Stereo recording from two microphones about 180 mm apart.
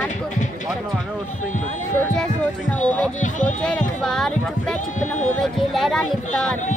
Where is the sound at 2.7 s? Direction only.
10° left (ahead or behind).